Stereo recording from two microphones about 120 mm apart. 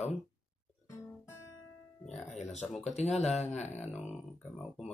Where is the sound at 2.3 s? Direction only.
70° left (ahead or behind).